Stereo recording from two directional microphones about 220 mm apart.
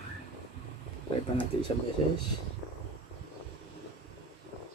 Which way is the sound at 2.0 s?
25° left (ahead or behind).